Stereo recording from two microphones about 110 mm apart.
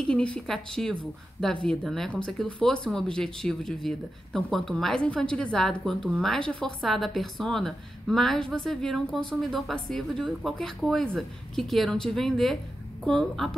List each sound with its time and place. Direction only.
0.0 s speech: 10° left (ahead or behind)